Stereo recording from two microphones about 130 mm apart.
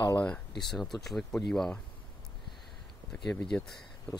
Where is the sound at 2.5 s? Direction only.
Centre (ahead or behind).